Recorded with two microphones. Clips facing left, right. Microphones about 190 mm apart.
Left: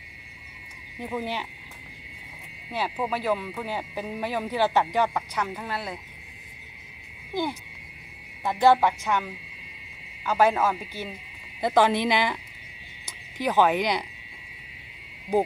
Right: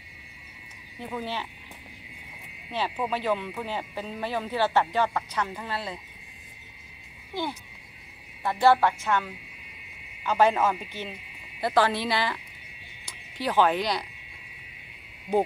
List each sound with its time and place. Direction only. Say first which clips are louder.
0.9 s speech: left 2 dB; 15° left (ahead or behind)
2.7 s speech: left 1 dB; 10° left (ahead or behind)
8.5 s speech: left 1 dB; 15° left (ahead or behind)
11.6 s a woman's voice: left 3 dB; 20° left (ahead or behind)